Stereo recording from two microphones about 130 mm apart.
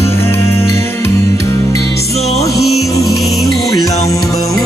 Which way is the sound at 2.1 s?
55° left (ahead or behind).